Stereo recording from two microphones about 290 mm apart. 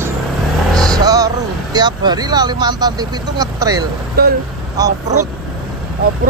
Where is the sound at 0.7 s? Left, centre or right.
Centre.